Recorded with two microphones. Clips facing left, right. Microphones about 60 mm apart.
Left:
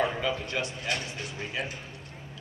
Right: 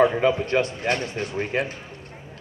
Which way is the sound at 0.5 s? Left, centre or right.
Right.